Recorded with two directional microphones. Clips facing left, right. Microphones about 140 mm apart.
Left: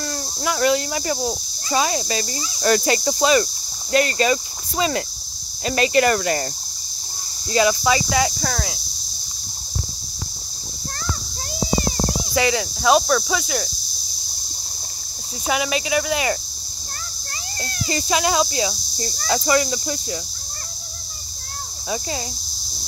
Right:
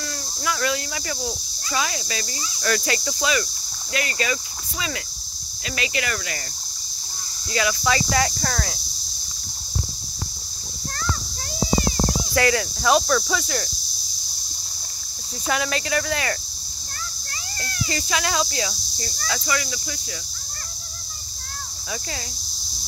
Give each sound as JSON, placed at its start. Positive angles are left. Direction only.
{"t": 0.0, "sound": "speech", "side_deg": 35}
{"t": 5.7, "sound": "speech", "side_deg": 40}
{"t": 7.5, "sound": "speech", "side_deg": 25}
{"t": 7.9, "sound": "speech", "side_deg": 15}
{"t": 12.4, "sound": "speech", "side_deg": 15}
{"t": 15.4, "sound": "speech", "side_deg": 10}
{"t": 17.8, "sound": "speech", "side_deg": 25}